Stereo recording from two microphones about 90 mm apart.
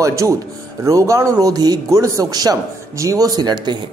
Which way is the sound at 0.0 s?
35° right (ahead or behind).